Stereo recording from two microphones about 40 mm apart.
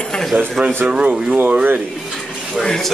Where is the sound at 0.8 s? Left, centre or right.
Right.